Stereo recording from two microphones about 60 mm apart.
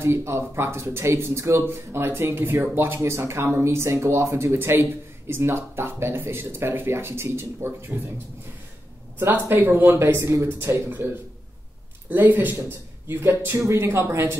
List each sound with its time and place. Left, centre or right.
0.0 s speech: right
3.0 s speech: right
9.2 s speech: right
12.1 s speech: right